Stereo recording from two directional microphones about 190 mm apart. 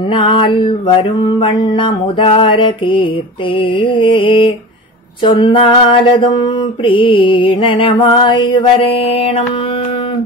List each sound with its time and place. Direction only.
0.1 s mantra: 25° left (ahead or behind)